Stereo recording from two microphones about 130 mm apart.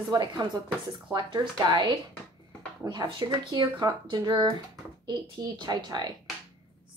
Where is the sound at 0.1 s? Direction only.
30° right (ahead or behind).